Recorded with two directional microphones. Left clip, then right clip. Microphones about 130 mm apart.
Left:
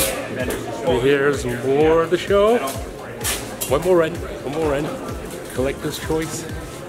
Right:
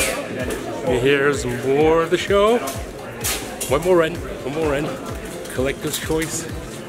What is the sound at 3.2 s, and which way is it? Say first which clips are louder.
Music: even; centre (ahead or behind).